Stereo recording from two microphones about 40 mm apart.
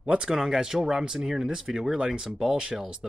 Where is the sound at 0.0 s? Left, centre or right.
Right.